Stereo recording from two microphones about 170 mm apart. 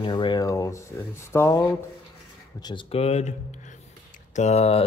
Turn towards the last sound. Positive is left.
turn(degrees=35)  # may be behind; listen again after turning